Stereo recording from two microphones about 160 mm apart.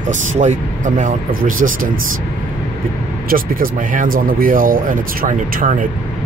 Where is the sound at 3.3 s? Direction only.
65° right (ahead or behind).